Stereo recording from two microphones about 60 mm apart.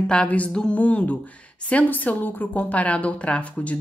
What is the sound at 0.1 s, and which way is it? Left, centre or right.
A woman's voice, centre.